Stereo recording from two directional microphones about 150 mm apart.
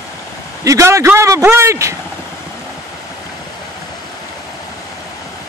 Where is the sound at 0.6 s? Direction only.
20° right (ahead or behind).